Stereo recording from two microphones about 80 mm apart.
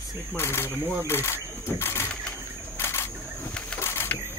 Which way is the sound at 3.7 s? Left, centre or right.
Left.